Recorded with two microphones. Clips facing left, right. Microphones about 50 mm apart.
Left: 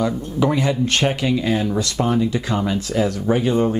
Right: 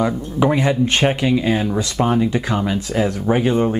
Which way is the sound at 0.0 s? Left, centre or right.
Right.